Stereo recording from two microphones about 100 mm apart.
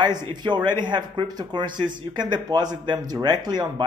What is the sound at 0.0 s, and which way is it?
Speech, 45° right (ahead or behind).